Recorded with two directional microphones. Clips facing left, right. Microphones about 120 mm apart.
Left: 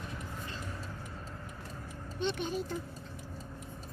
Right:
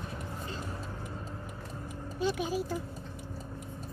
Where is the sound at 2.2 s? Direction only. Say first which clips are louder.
Right 3 dB; 5° right (ahead or behind).